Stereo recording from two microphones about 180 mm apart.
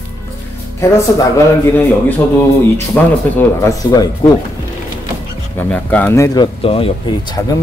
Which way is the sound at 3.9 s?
20° left (ahead or behind).